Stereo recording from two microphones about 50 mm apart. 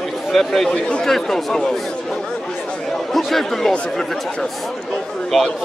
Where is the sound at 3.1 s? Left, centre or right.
Centre.